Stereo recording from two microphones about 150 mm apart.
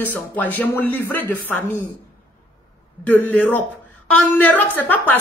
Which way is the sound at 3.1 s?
10° left (ahead or behind).